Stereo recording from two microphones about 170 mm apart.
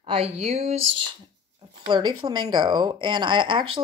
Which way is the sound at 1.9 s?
25° right (ahead or behind).